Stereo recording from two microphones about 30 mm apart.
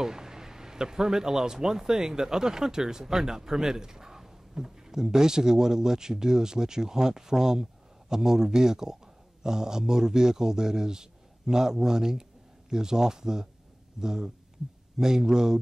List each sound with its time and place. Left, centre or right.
0.0 s a man's voice: centre